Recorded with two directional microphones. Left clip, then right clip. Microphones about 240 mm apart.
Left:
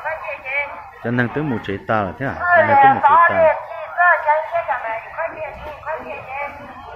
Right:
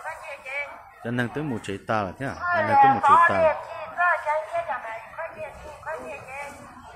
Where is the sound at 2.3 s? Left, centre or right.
Right.